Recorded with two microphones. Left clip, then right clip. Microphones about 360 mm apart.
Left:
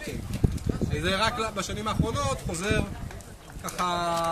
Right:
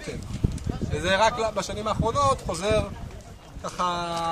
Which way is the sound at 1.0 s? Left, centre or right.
Centre.